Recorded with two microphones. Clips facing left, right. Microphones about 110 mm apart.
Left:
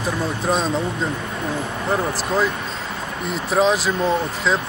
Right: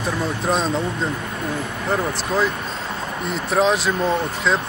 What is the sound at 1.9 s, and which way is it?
Speech, centre (ahead or behind).